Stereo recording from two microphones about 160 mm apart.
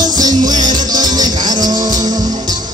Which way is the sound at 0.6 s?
25° right (ahead or behind).